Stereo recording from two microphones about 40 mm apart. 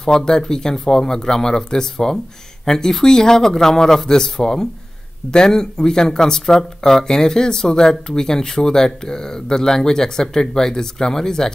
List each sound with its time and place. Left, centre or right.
0.0 s speech: centre